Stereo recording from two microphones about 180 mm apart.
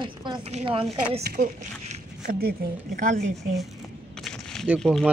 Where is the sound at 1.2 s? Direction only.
50° right (ahead or behind).